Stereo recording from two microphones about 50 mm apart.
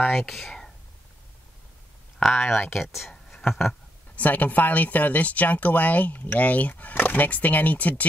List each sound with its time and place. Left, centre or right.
0.1 s speech: centre
2.1 s a sound: centre
2.7 s speech: centre
4.2 s speech: left